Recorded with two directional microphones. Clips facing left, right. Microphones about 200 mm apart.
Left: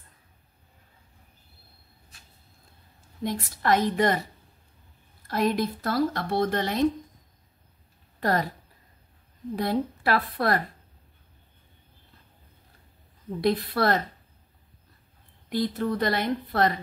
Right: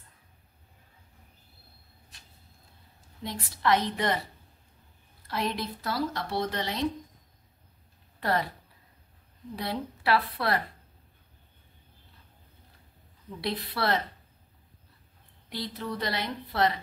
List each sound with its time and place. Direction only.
3.3 s speech: 45° left (ahead or behind)
5.2 s speech: 50° left (ahead or behind)
8.2 s speech: 45° left (ahead or behind)
9.6 s speech: 45° left (ahead or behind)
13.4 s speech: 50° left (ahead or behind)
15.5 s speech: 50° left (ahead or behind)